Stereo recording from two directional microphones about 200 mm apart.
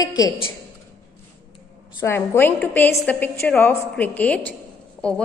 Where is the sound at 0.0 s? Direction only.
20° left (ahead or behind).